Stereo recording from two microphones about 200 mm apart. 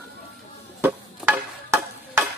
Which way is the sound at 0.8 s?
10° right (ahead or behind).